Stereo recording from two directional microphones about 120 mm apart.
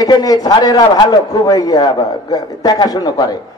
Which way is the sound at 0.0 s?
30° left (ahead or behind).